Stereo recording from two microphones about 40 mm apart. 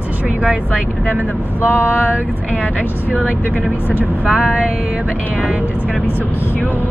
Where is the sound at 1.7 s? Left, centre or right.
Left.